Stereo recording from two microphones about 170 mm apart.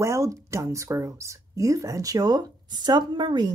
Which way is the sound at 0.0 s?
15° right (ahead or behind).